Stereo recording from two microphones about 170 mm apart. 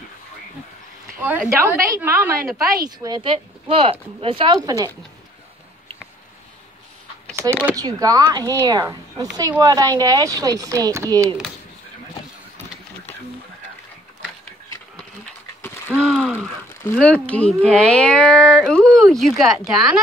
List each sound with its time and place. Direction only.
1.2 s a woman's voice: 10° right (ahead or behind)
2.8 s speech: 25° right (ahead or behind)
4.6 s a woman's voice: 20° right (ahead or behind)
7.7 s a woman's voice: 20° right (ahead or behind)
16.0 s a sound: centre (ahead or behind)
16.8 s speech: 5° left (ahead or behind)